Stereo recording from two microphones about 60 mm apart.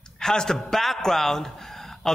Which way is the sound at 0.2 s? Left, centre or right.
Centre.